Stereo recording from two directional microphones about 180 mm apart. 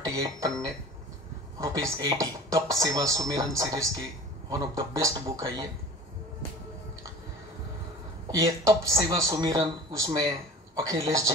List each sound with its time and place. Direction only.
0.1 s speech: 20° right (ahead or behind)
8.4 s speech: 20° right (ahead or behind)